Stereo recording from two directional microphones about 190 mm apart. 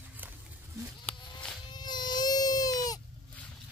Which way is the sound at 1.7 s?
20° left (ahead or behind).